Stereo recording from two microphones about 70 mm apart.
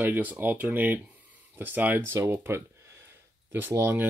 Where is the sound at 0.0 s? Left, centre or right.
Right.